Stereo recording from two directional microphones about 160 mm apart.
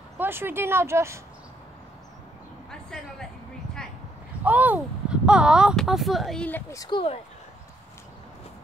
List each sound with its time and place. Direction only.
0.2 s speech: 15° right (ahead or behind)
2.7 s speech: 5° left (ahead or behind)
4.5 s speech: 10° right (ahead or behind); by 6.6 s 5° left (ahead or behind)
6.7 s speech: 20° left (ahead or behind)